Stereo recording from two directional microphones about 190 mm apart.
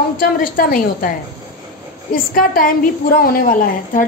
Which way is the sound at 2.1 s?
50° left (ahead or behind).